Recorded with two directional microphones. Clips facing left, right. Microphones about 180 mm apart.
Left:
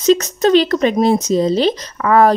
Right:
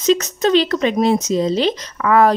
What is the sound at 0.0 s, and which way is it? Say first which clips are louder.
Speech: left 3 dB; 40° left (ahead or behind).